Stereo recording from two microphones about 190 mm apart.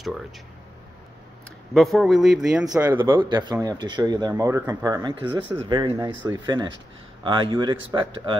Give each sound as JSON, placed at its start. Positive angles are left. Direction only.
{"t": 1.7, "sound": "speech", "side_deg": 0}
{"t": 2.8, "sound": "speech", "side_deg": -20}